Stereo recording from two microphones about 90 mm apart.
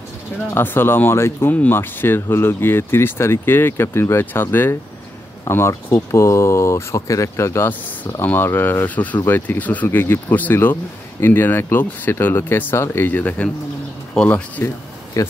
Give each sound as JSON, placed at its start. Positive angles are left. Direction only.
{"t": 0.6, "sound": "speech", "side_deg": 25}
{"t": 15.2, "sound": "speech", "side_deg": 35}